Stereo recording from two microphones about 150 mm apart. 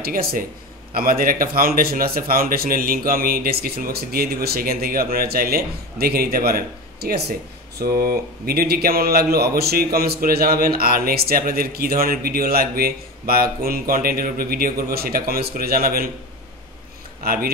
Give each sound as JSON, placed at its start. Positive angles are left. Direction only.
{"t": 0.0, "sound": "speech", "side_deg": -85}
{"t": 17.2, "sound": "speech", "side_deg": -80}